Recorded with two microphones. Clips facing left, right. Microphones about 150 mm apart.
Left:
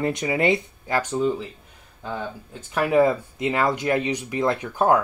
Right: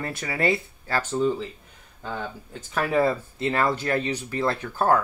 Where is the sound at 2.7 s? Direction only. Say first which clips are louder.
Left 4 dB; 15° left (ahead or behind).